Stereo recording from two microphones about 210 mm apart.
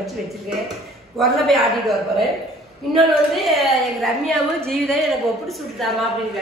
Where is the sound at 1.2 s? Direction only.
Centre (ahead or behind).